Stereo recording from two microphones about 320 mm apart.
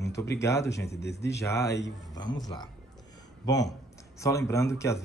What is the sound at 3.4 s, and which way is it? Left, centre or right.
Speech, centre.